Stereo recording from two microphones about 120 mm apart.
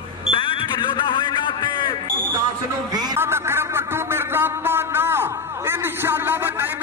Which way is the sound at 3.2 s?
20° right (ahead or behind).